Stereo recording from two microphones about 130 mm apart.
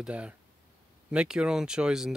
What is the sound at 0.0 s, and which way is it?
Speech, 10° right (ahead or behind).